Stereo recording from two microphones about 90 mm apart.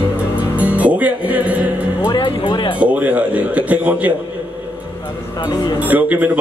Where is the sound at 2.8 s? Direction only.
15° right (ahead or behind).